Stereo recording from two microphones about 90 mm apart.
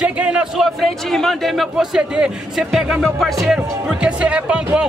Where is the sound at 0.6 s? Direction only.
Centre (ahead or behind).